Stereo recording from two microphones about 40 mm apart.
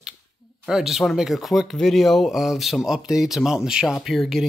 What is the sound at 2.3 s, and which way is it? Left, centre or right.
Speech, centre.